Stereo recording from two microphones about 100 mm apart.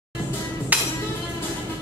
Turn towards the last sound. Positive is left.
turn(degrees=-15)  # may be behind; listen again after turning